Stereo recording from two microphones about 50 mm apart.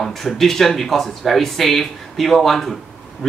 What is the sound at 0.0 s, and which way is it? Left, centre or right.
Speech, centre.